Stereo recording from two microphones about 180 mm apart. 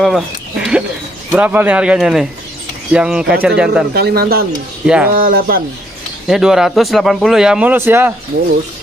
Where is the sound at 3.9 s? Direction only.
60° right (ahead or behind).